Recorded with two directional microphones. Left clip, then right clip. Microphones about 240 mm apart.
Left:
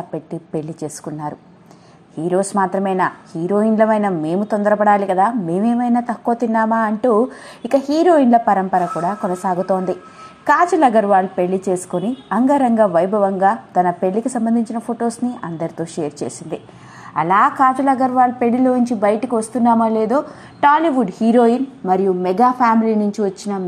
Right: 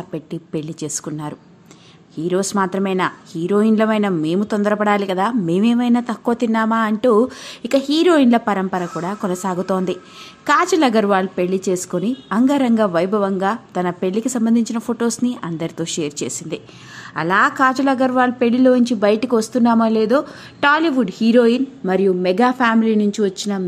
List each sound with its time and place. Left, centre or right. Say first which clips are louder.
0.1 s a woman's voice: right 2 dB; centre
15.8 s a woman's voice: even; centre; by 23.4 s right